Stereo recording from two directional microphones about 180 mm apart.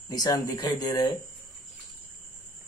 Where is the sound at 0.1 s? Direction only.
20° left (ahead or behind).